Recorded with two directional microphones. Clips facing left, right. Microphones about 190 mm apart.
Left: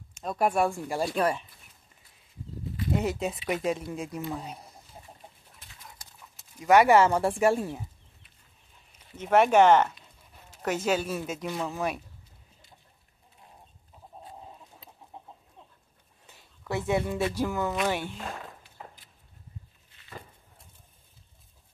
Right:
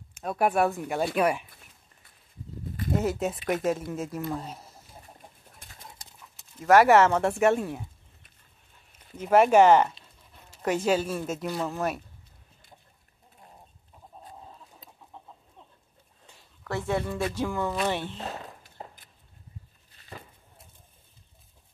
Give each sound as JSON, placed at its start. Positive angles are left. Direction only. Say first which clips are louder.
{"t": 0.1, "sound": "speech", "louder": "right 1 dB", "side_deg": -5}
{"t": 3.0, "sound": "speech", "louder": "right 4 dB", "side_deg": 0}
{"t": 6.3, "sound": "speech", "louder": "right 1 dB", "side_deg": 0}
{"t": 9.1, "sound": "speech", "louder": "right 2 dB", "side_deg": -5}
{"t": 16.7, "sound": "speech", "louder": "left 1 dB", "side_deg": 15}
{"t": 18.8, "sound": "walk", "louder": "right 3 dB", "side_deg": -30}
{"t": 19.9, "sound": "a sound", "louder": "right 4 dB", "side_deg": -35}